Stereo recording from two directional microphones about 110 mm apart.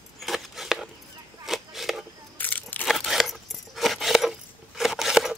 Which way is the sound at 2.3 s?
15° left (ahead or behind).